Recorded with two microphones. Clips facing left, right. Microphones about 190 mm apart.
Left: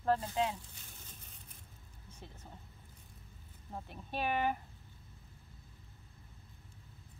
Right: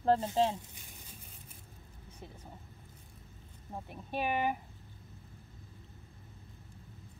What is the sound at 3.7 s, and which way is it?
Speech, 10° right (ahead or behind).